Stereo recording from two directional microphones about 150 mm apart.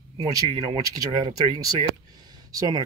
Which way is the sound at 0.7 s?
30° right (ahead or behind).